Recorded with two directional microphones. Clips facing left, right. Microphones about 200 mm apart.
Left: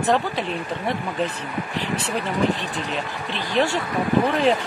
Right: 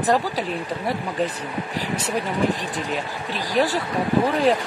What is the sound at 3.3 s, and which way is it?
Speech, 40° right (ahead or behind).